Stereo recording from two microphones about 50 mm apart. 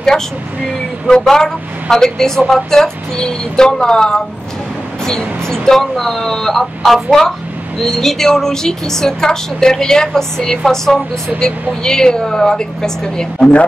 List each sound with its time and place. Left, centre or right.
0.1 s a woman's voice: centre